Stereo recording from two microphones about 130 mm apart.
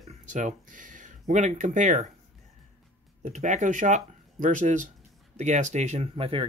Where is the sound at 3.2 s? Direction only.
70° right (ahead or behind).